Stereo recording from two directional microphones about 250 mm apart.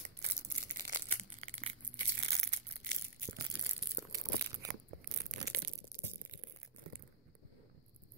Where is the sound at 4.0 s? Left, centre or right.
Centre.